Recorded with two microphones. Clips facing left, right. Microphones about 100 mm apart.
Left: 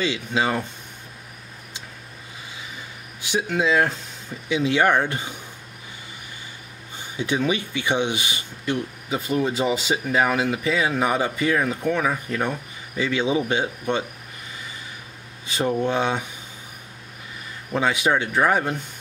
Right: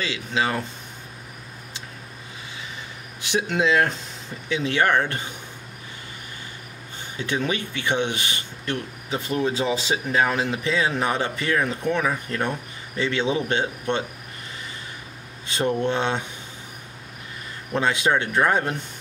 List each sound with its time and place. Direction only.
0.0 s speech: 20° left (ahead or behind)
3.3 s speech: 5° left (ahead or behind)
4.5 s speech: 15° left (ahead or behind)
7.2 s speech: 15° left (ahead or behind)
15.5 s speech: 10° left (ahead or behind)
17.7 s speech: 5° left (ahead or behind)